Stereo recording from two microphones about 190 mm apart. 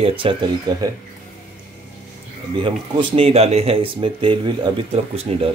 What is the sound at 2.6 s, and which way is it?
Speech, 30° right (ahead or behind).